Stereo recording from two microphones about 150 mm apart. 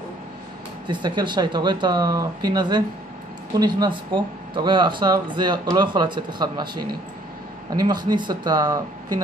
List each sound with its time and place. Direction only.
1.0 s speech: 30° right (ahead or behind)